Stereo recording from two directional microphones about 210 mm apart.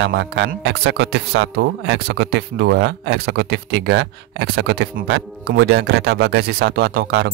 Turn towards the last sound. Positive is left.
turn(degrees=-50)  # may be behind; listen again after turning